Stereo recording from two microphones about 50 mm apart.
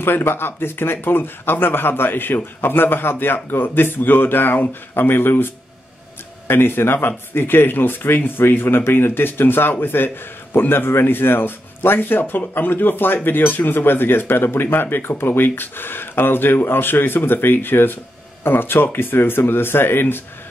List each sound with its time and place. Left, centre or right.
0.0 s speech: left